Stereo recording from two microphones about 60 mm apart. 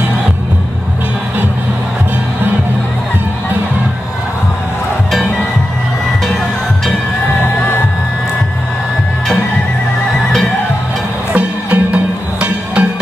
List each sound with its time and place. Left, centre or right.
11.3 s music: right